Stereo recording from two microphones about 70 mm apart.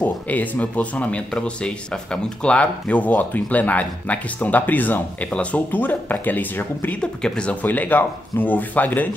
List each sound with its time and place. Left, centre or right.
0.0 s speech: left
7.0 s speech: centre
7.6 s speech: left